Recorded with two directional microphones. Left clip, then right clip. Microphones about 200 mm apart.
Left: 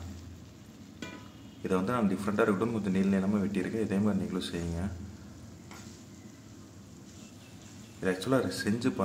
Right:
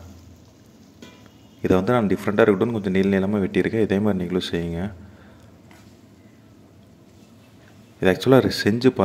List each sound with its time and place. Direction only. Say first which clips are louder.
1.6 s a man's voice: right 11 dB; 35° right (ahead or behind)
8.0 s a man's voice: right 13 dB; 40° right (ahead or behind)